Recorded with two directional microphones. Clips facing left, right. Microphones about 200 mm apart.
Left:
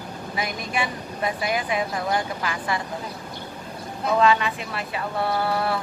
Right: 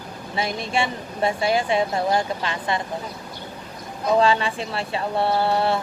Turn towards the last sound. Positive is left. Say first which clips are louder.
# right 3 dB
turn(degrees=-25)  # may be behind; listen again after turning